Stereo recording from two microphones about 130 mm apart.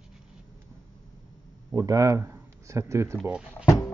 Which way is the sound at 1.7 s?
25° right (ahead or behind).